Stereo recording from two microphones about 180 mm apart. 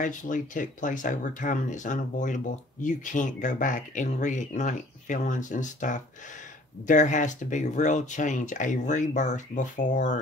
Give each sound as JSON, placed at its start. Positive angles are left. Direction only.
{"t": 0.0, "sound": "speech", "side_deg": 45}